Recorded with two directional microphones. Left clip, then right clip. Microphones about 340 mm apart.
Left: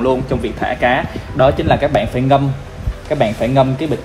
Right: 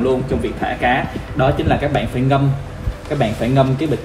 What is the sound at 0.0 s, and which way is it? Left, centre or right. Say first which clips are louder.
Speech: left 2 dB; centre.